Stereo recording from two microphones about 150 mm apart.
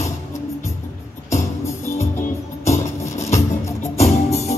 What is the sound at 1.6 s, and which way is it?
Music, 20° left (ahead or behind).